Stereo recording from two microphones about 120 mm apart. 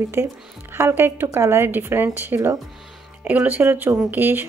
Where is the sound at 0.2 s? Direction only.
20° right (ahead or behind).